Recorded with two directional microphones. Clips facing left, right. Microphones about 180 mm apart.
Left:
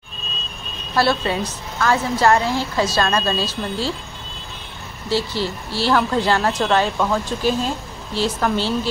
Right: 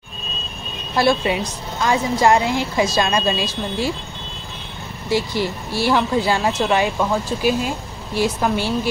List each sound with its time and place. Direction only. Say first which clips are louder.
0.9 s speech: right 1 dB; 15° right (ahead or behind)
5.1 s speech: right 1 dB; 15° right (ahead or behind)